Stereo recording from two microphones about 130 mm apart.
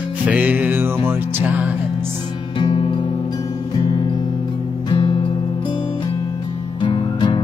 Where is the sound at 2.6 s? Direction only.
35° left (ahead or behind).